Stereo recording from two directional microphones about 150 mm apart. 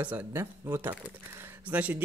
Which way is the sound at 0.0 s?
10° right (ahead or behind).